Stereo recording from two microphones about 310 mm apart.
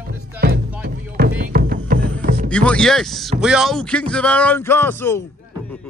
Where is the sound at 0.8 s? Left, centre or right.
Right.